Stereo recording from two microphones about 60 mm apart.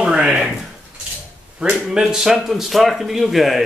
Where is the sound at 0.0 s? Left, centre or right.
Centre.